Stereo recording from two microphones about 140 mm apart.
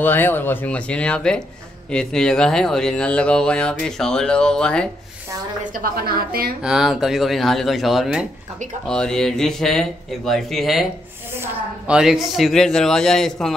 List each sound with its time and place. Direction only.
0.0 s speech: 15° left (ahead or behind)
5.6 s a woman's voice: 85° right
6.6 s speech: 5° right (ahead or behind)
11.9 s speech: 5° right (ahead or behind)